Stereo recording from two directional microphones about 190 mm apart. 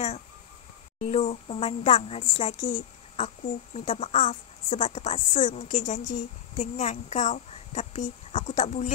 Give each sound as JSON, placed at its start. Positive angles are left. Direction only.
{"t": 1.0, "sound": "a woman's voice", "side_deg": 35}